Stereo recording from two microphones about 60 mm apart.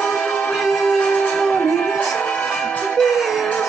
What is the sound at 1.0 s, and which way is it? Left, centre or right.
Music, left.